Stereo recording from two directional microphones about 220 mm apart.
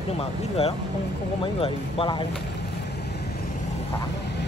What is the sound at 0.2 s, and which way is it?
Speech, 25° left (ahead or behind).